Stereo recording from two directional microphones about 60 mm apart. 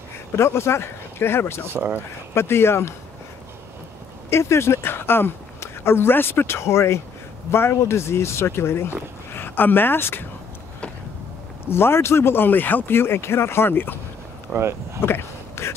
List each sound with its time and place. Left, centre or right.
0.4 s speech: left
1.7 s speech: right
2.3 s speech: left
4.3 s speech: left
11.6 s a man's voice: left
14.5 s speech: centre
15.0 s a sound: left